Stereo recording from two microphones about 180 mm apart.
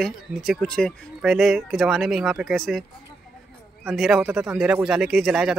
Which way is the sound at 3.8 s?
Centre (ahead or behind).